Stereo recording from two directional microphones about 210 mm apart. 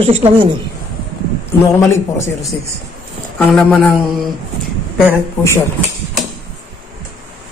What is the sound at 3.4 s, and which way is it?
Speech, 5° left (ahead or behind).